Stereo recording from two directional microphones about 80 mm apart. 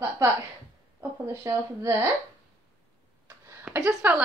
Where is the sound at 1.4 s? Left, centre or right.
Right.